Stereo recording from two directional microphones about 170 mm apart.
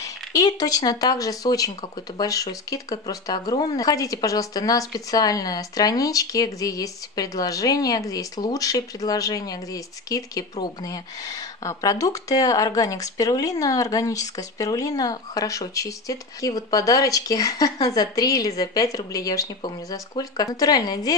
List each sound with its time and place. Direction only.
0.0 s speech: 20° left (ahead or behind)